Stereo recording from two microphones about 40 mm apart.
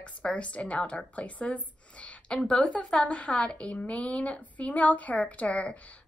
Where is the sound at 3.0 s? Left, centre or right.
Left.